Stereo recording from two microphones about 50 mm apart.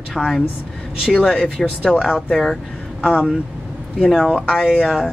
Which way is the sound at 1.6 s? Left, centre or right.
Centre.